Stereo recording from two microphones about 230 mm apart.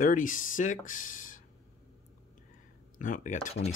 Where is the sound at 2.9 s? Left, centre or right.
Left.